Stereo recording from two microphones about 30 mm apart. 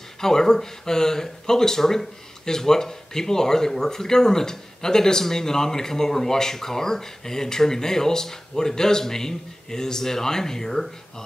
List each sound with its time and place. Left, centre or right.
0.2 s speech: centre